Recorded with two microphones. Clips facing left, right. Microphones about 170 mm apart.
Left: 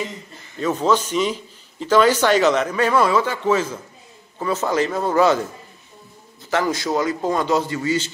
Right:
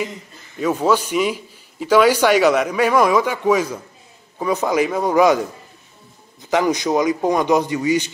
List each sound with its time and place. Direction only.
0.6 s a man's voice: 10° right (ahead or behind)